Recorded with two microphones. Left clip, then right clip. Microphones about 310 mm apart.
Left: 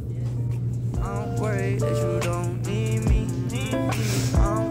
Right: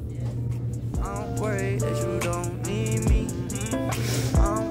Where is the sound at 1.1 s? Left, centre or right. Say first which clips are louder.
Left 1 dB; centre.